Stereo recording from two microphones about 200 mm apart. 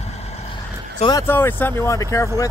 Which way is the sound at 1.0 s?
20° left (ahead or behind).